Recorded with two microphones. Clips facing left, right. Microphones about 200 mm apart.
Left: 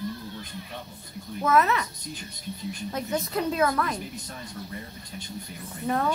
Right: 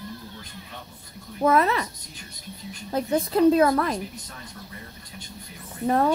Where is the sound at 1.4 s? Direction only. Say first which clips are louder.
Right 2 dB; 30° right (ahead or behind).